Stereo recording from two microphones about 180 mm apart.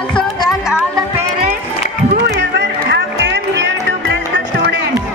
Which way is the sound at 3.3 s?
75° right (ahead or behind).